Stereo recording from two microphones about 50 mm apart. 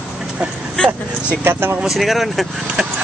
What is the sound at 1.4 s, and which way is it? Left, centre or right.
Speech, right.